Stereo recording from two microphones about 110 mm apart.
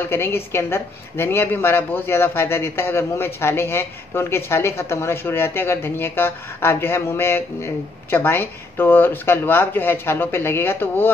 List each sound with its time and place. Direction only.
0.1 s a woman's voice: 20° left (ahead or behind)